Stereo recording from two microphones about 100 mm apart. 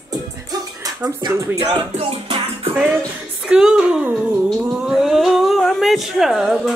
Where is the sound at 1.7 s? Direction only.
75° right (ahead or behind).